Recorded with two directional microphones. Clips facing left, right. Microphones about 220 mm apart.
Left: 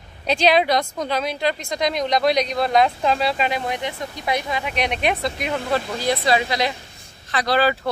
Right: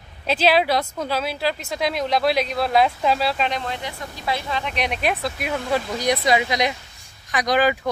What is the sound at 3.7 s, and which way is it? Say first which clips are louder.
Speech: left 4 dB; 20° left (ahead or behind).